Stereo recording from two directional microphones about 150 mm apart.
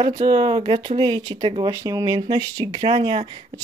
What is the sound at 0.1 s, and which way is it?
Speech, 30° right (ahead or behind).